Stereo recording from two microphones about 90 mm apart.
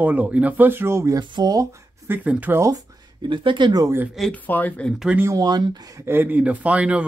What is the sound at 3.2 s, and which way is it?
Speech, 65° right (ahead or behind).